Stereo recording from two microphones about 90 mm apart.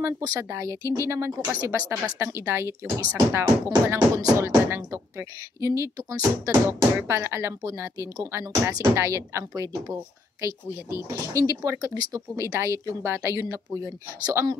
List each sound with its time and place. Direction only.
0.4 s speech: 35° right (ahead or behind)